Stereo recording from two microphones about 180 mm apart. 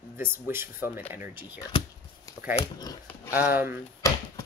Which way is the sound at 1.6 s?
20° left (ahead or behind).